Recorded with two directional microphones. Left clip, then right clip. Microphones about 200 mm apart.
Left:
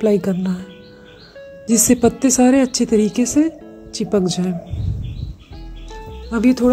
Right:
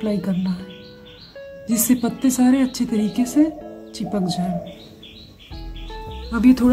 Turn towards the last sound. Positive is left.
turn(degrees=25)  # may be behind; listen again after turning